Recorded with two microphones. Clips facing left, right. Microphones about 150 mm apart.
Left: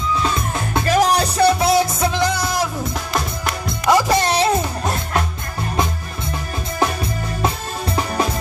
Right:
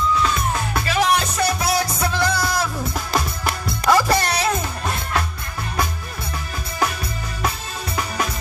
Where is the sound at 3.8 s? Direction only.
20° left (ahead or behind).